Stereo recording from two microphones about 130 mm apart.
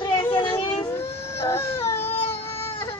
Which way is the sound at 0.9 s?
20° left (ahead or behind).